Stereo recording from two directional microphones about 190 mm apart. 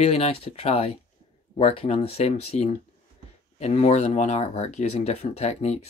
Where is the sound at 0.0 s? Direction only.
30° left (ahead or behind).